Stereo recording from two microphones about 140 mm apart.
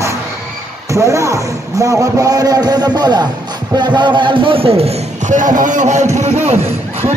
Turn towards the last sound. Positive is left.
turn(degrees=-50)  # may be behind; listen again after turning